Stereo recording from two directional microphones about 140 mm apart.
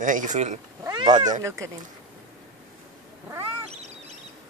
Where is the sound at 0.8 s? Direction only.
30° right (ahead or behind).